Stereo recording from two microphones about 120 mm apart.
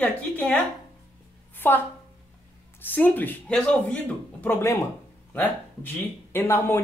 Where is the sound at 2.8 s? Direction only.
15° left (ahead or behind).